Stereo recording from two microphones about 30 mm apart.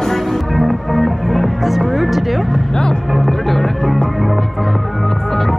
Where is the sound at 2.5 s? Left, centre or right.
Left.